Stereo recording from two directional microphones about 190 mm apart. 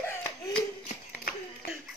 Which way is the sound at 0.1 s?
15° left (ahead or behind).